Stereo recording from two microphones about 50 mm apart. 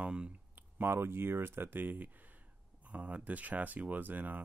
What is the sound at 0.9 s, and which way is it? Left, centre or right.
Speech, right.